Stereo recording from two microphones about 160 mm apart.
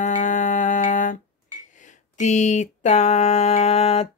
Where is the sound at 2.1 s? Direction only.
45° left (ahead or behind).